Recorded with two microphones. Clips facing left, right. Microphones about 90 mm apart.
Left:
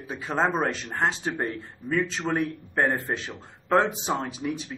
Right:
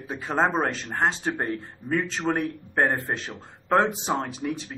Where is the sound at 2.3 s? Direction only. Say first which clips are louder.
Right 1 dB; 15° right (ahead or behind).